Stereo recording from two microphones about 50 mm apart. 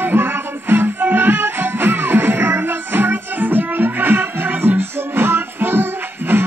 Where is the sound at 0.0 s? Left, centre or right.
Right.